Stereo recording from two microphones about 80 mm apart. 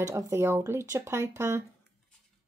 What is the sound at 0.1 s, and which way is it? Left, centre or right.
Speech, right.